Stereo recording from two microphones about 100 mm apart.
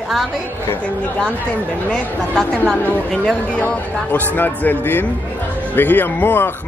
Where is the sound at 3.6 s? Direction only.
20° left (ahead or behind).